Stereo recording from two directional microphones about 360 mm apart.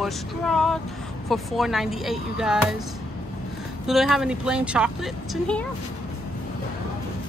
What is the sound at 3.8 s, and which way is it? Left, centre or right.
Speech, centre.